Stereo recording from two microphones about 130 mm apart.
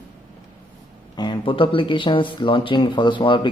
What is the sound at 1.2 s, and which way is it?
A man's voice, 40° left (ahead or behind).